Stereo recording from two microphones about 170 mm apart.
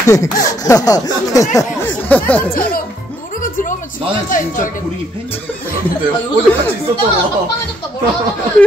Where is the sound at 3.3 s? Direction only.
50° left (ahead or behind).